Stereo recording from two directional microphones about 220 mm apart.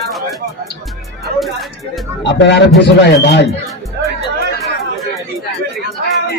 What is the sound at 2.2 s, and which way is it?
Speech, 50° left (ahead or behind).